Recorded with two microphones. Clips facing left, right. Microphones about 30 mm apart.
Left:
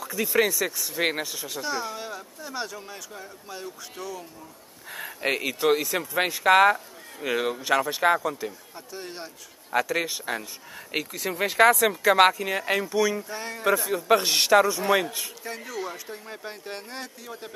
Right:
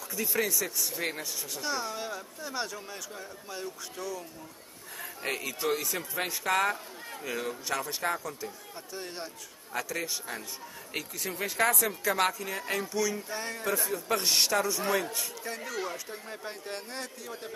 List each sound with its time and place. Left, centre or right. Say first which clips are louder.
0.0 s speech: left 6 dB; left
0.6 s speech: left 6 dB; left
1.6 s speech: left 3 dB; centre
5.2 s speech: left 8 dB; left
8.2 s a sound: left 8 dB; left
8.9 s speech: left 2 dB; centre
9.7 s speech: left 8 dB; left
12.0 s speech: left 10 dB; left
12.4 s speech: left 8 dB; left
12.7 s a sound: left 6 dB; left
13.3 s speech: left 2 dB; centre
13.9 s speech: left 4 dB; left
14.9 s a sound: left 6 dB; left
15.4 s speech: left 2 dB; centre